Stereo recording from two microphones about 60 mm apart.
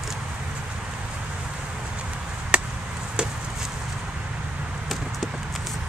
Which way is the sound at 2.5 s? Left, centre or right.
Centre.